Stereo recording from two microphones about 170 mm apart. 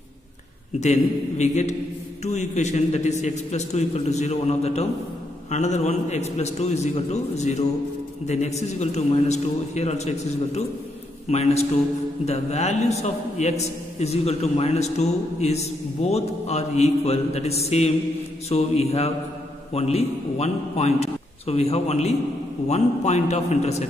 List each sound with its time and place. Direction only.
1.4 s a man's voice: 45° left (ahead or behind)